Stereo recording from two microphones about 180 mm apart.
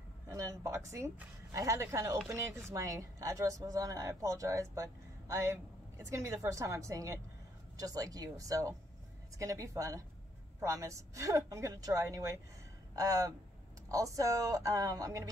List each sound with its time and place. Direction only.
0.3 s speech: 15° right (ahead or behind)